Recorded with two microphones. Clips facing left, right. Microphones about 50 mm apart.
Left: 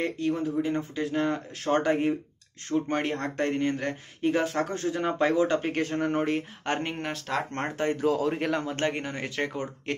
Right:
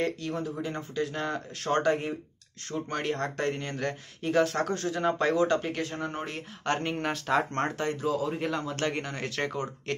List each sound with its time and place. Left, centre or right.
0.0 s speech: centre
5.7 s speech: left
6.6 s speech: centre
7.1 s speech: centre
7.5 s speech: centre
7.9 s a man's voice: left
8.9 s speech: centre